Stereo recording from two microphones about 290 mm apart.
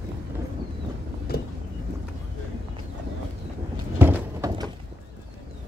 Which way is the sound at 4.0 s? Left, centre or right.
Centre.